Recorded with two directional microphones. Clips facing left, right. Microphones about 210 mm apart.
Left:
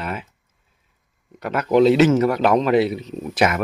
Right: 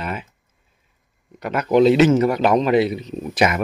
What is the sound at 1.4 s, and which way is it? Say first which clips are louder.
Speech: even; centre (ahead or behind).